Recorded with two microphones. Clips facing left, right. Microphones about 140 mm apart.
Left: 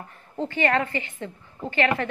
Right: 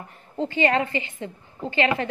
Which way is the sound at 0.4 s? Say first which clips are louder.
Right 2 dB; 20° right (ahead or behind).